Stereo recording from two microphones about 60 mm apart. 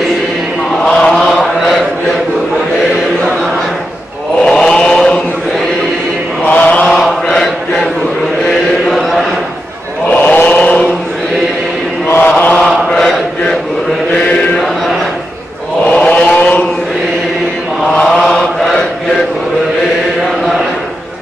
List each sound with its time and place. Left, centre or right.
0.8 s chant: centre
4.5 s chant: centre
6.4 s mantra: left
7.0 s chant: centre
8.8 s chant: centre
10.0 s chant: left
12.1 s chant: left
12.9 s chant: centre
15.9 s vehicle: left
18.0 s mantra: centre